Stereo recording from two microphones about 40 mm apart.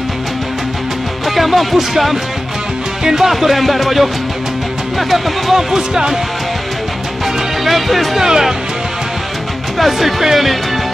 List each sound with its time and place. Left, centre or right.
1.3 s speech: centre
5.8 s music: centre
7.6 s speech: centre
8.2 s music: centre
9.8 s speech: centre